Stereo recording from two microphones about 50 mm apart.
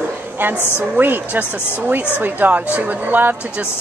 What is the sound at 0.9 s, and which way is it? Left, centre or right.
A woman's voice, right.